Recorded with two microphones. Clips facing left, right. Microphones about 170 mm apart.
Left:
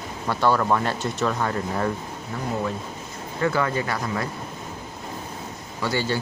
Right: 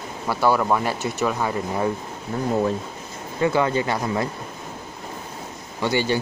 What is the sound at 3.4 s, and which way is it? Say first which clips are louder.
Speech: right 3 dB; 20° right (ahead or behind).